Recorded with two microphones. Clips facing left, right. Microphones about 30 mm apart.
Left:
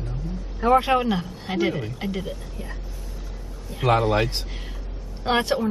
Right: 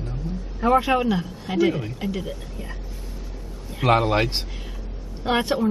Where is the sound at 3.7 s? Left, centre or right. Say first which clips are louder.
Right 1 dB; centre.